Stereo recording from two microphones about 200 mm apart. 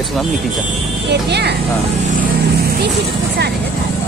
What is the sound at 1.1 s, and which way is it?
Speech, 55° right (ahead or behind).